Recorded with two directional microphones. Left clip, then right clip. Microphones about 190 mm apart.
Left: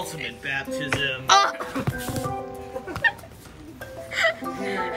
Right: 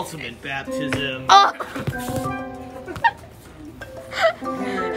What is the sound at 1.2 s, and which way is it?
Speech, 10° right (ahead or behind).